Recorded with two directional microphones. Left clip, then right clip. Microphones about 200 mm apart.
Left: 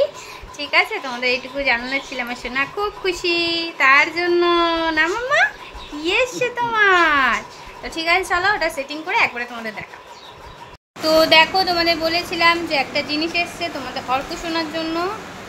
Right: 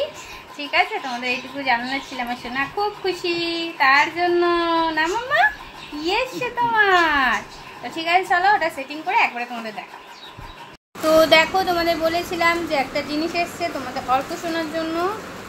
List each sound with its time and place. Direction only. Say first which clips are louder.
0.6 s a woman's voice: left 2 dB; 25° left (ahead or behind)
11.1 s a woman's voice: left 1 dB; centre (ahead or behind)